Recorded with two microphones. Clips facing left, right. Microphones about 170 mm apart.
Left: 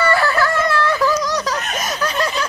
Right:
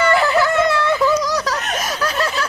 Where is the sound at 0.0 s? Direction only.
20° right (ahead or behind).